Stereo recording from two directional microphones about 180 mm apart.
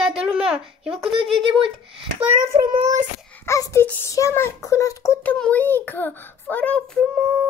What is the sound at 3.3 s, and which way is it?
A child's voice, 15° left (ahead or behind).